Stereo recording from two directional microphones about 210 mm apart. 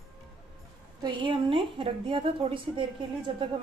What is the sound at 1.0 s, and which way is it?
A woman's voice, 25° right (ahead or behind).